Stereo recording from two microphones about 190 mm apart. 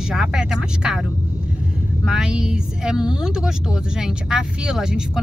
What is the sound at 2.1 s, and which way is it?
Speech, 5° right (ahead or behind).